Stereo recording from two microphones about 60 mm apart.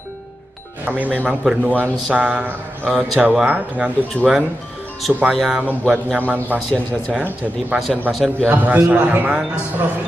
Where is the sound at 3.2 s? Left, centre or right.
Centre.